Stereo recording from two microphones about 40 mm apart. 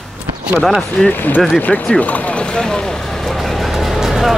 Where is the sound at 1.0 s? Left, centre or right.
Left.